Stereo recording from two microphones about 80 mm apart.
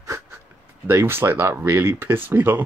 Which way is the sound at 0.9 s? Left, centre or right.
Right.